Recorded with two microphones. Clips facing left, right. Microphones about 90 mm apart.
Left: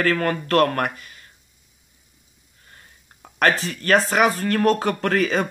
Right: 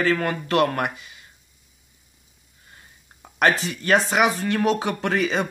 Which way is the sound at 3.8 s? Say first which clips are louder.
Left 1 dB; 5° right (ahead or behind).